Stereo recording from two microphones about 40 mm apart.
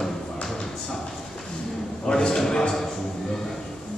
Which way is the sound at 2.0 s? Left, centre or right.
Left.